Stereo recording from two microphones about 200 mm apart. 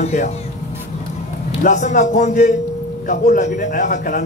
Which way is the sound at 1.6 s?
35° left (ahead or behind).